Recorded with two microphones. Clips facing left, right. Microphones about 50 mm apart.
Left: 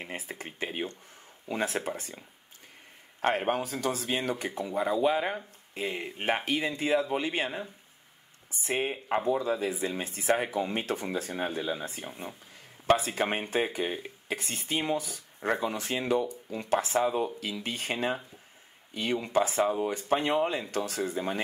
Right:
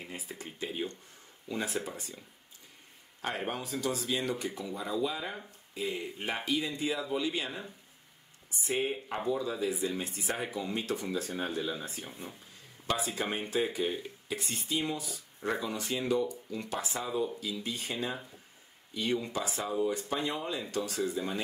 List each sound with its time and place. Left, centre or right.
0.0 s speech: left
3.2 s speech: left
8.6 s speech: left
12.8 s speech: left